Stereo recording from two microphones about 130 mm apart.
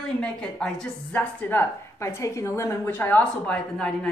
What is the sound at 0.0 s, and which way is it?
A woman's voice, 5° left (ahead or behind).